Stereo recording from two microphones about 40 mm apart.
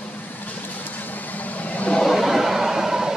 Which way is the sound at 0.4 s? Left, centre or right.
Left.